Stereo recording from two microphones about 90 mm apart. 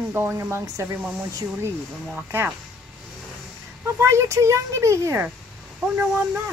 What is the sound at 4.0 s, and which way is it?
Speech, 30° right (ahead or behind).